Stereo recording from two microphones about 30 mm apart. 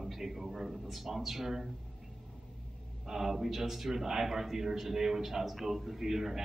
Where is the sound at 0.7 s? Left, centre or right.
Centre.